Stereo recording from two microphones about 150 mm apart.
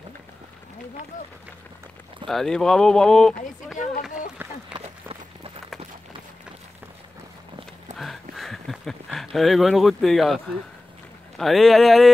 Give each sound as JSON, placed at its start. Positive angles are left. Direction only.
{"t": 2.2, "sound": "speech", "side_deg": 0}
{"t": 4.8, "sound": "run", "side_deg": -40}
{"t": 8.0, "sound": "a sound", "side_deg": 0}
{"t": 11.3, "sound": "speech", "side_deg": 0}